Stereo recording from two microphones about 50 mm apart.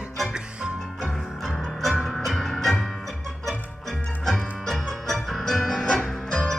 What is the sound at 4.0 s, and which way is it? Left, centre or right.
Music, left.